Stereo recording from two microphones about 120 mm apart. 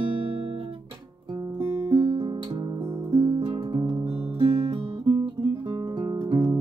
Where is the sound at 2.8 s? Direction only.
20° right (ahead or behind).